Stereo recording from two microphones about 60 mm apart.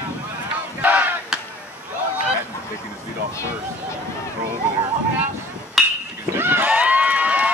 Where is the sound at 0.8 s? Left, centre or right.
Right.